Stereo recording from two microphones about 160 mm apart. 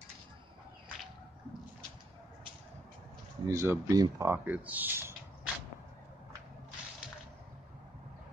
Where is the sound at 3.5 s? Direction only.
20° right (ahead or behind).